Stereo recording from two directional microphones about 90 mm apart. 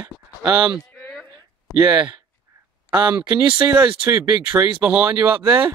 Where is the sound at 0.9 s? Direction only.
20° left (ahead or behind).